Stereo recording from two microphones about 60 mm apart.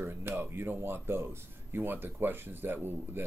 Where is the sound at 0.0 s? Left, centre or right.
Right.